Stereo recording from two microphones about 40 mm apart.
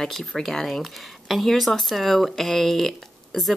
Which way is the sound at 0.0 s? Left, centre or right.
Centre.